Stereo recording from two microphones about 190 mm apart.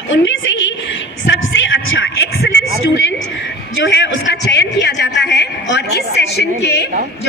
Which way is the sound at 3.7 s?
70° left (ahead or behind).